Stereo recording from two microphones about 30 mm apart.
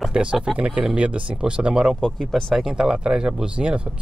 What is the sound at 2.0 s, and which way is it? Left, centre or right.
Speech, centre.